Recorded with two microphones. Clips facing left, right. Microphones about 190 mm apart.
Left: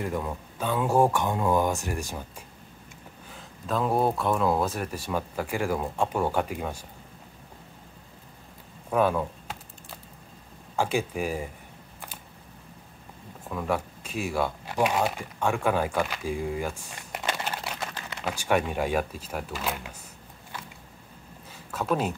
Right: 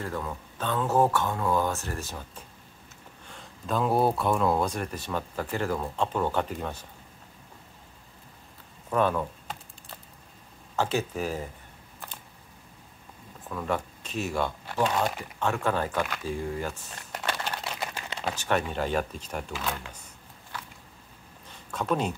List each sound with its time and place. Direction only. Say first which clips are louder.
0.0 s speech: left 3 dB; 15° left (ahead or behind)
3.3 s speech: even; centre (ahead or behind)
8.9 s speech: left 2 dB; 10° left (ahead or behind)
10.8 s speech: left 1 dB; 10° left (ahead or behind)
13.5 s speech: left 2 dB; 10° left (ahead or behind)
21.5 s a sound: left 1 dB; 5° left (ahead or behind)